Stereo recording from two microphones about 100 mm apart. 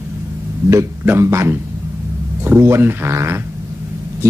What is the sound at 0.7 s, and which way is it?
Speech, 30° right (ahead or behind).